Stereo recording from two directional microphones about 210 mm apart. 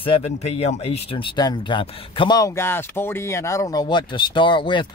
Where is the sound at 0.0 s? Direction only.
30° left (ahead or behind).